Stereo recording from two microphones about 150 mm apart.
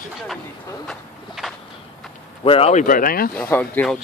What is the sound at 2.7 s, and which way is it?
Speech, 60° left (ahead or behind).